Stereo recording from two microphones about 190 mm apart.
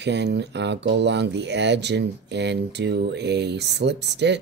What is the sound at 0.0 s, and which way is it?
Speech, 65° right (ahead or behind).